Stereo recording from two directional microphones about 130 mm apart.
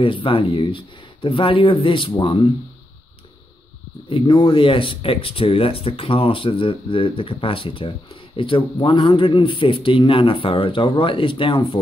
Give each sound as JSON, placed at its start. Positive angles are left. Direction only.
{"t": 0.0, "sound": "speech", "side_deg": 45}
{"t": 4.1, "sound": "speech", "side_deg": 40}